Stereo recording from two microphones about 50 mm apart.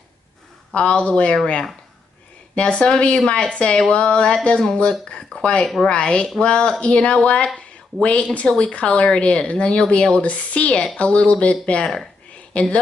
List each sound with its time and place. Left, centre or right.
0.7 s speech: left
11.8 s speech: centre
12.6 s speech: left